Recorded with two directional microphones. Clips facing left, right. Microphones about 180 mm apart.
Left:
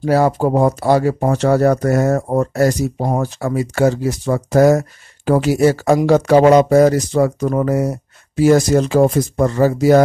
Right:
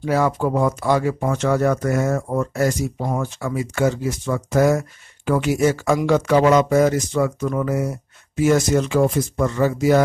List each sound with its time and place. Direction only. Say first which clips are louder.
0.0 s speech: left 5 dB; 35° left (ahead or behind)